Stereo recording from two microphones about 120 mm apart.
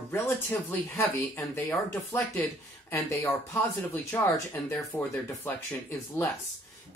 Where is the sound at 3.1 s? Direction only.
25° left (ahead or behind).